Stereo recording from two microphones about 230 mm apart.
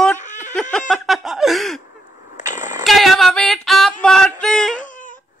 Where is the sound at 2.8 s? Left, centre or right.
Centre.